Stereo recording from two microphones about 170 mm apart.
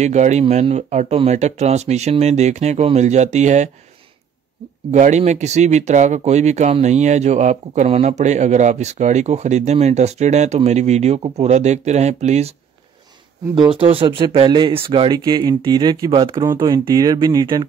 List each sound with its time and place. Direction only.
0.0 s speech: 45° right (ahead or behind)
4.9 s speech: 45° right (ahead or behind)
13.6 s speech: 30° right (ahead or behind)